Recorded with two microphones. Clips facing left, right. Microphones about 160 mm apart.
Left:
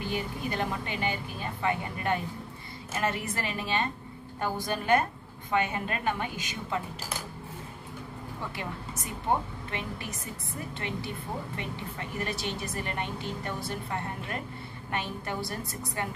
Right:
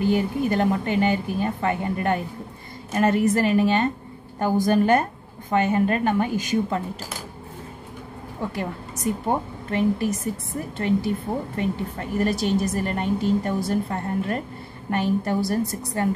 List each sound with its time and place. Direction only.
0.0 s a woman's voice: 50° right (ahead or behind)
8.4 s a woman's voice: 45° right (ahead or behind)
11.5 s a woman's voice: 45° right (ahead or behind)